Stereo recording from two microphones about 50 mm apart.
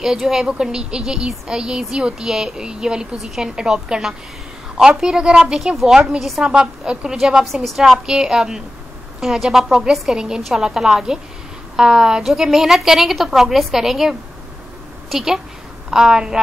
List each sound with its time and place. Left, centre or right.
0.0 s speech: centre
6.4 s a woman's voice: centre